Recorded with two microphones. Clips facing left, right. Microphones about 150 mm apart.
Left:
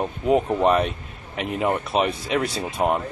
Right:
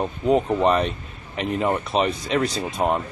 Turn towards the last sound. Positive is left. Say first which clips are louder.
# even
turn(degrees=5)  # may be behind; listen again after turning